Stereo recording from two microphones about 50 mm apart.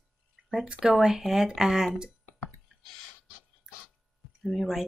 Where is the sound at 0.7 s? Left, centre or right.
Centre.